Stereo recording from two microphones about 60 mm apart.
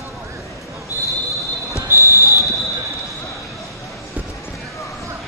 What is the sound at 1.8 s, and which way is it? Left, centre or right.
Basketball bounce, right.